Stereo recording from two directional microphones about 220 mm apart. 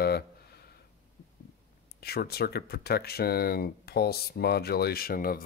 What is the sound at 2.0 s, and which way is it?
Speech, 45° left (ahead or behind).